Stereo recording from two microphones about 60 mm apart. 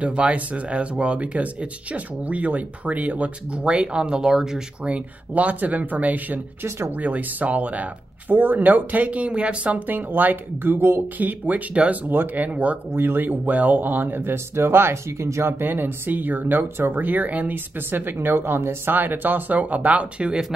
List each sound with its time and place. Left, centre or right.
0.0 s speech: right
4.9 s speech: right
12.9 s speech: right
15.6 s speech: right